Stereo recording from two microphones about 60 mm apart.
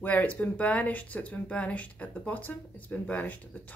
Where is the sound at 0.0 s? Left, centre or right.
Left.